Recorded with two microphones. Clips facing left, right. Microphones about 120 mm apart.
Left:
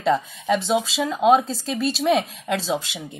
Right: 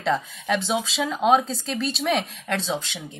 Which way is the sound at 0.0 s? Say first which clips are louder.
Left 3 dB; centre (ahead or behind).